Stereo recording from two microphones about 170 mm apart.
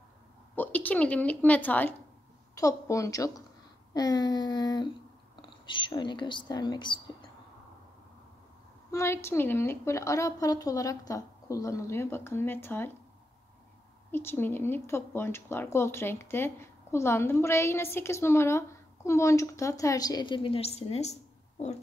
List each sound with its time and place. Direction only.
0.6 s a woman's voice: 10° left (ahead or behind)
3.9 s a sound: 25° left (ahead or behind)
8.9 s speech: 15° left (ahead or behind)
14.1 s speech: 15° left (ahead or behind); by 21.8 s 40° left (ahead or behind)